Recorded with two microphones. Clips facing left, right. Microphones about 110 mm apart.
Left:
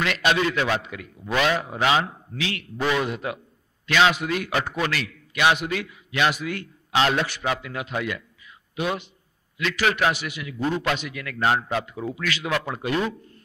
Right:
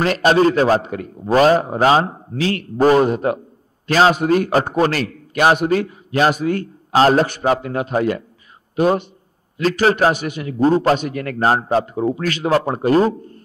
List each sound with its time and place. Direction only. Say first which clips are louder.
0.0 s a man's voice: right 8 dB; 40° right (ahead or behind)